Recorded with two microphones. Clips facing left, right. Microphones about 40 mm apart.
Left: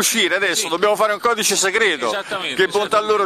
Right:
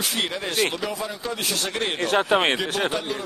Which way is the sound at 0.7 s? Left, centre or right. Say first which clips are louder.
Left 12 dB; left.